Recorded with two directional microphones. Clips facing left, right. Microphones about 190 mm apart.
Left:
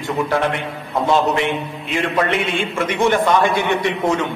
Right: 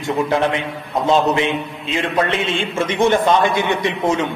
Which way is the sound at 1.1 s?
20° right (ahead or behind).